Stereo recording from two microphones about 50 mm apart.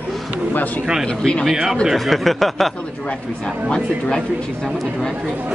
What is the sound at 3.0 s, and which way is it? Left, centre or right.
Speech, centre.